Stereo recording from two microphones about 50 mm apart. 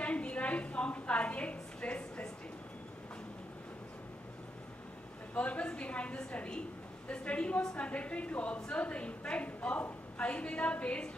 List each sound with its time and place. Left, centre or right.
0.0 s a woman's voice: left
5.3 s a woman's voice: left